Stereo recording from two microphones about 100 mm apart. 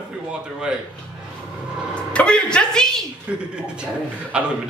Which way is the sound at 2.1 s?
10° left (ahead or behind).